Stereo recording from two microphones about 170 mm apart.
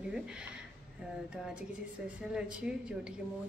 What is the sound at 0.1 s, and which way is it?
Speech, 5° right (ahead or behind).